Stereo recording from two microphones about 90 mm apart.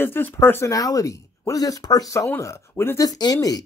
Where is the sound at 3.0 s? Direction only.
50° left (ahead or behind).